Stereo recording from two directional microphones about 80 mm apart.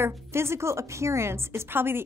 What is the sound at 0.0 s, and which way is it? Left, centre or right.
A woman's voice, right.